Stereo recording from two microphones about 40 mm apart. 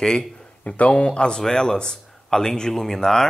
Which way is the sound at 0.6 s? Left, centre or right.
Left.